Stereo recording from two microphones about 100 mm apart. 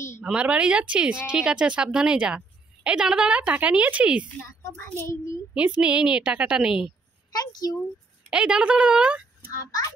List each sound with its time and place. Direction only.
0.2 s speech: 10° right (ahead or behind)
4.4 s a child's voice: 20° left (ahead or behind)
5.8 s speech: 10° right (ahead or behind)
7.3 s a child's voice: 40° left (ahead or behind)
8.3 s speech: 10° right (ahead or behind)